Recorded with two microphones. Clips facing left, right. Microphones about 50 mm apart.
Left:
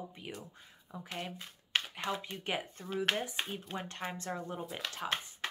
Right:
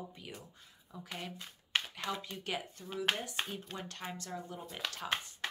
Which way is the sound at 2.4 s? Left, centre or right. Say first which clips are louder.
Left 2 dB; left.